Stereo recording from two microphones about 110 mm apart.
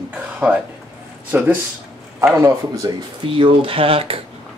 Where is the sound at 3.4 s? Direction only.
55° right (ahead or behind).